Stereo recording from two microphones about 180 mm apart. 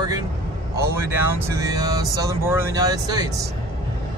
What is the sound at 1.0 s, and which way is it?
Speech, 10° right (ahead or behind).